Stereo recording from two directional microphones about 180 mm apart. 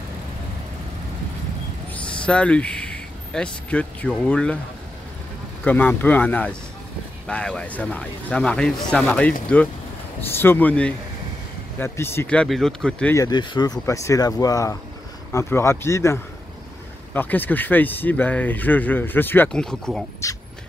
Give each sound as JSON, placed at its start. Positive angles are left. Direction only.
{"t": 2.0, "sound": "speech", "side_deg": 5}
{"t": 5.6, "sound": "speech", "side_deg": 10}
{"t": 13.1, "sound": "speech", "side_deg": 20}
{"t": 20.2, "sound": "speech", "side_deg": 15}